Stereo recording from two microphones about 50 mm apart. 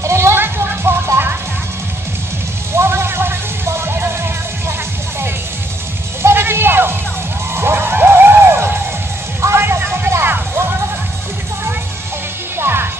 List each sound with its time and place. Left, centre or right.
0.0 s music: right
2.7 s music: right
6.2 s music: right
12.5 s music: right